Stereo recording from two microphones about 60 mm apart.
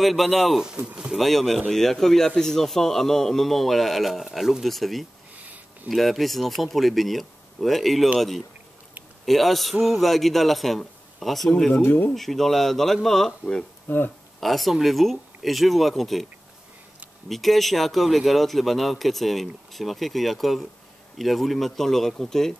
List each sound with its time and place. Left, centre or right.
0.0 s speech: centre
0.6 s speech: centre
1.1 s speech: centre
9.2 s speech: centre
11.7 s speech: left
12.1 s speech: centre
13.8 s speech: left
14.4 s speech: centre
17.3 s speech: centre